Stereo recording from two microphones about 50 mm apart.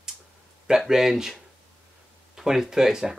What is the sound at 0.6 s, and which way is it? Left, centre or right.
Speech, centre.